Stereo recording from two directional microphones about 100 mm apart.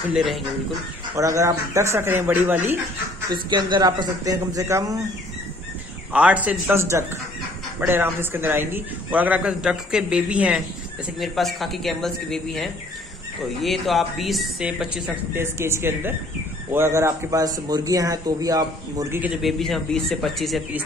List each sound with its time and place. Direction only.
0.1 s a woman's voice: 5° right (ahead or behind)
1.1 s speech: 30° right (ahead or behind)
3.4 s speech: 45° right (ahead or behind)
4.2 s a man's voice: 35° right (ahead or behind)
6.1 s a man's voice: 15° right (ahead or behind)
6.8 s a man's voice: 30° right (ahead or behind); by 10.6 s 10° right (ahead or behind)
11.1 s a woman's voice: centre (ahead or behind)
15.3 s a man's voice: 25° right (ahead or behind)
19.1 s a man's voice: 15° right (ahead or behind)
19.4 s a woman's voice: 5° left (ahead or behind)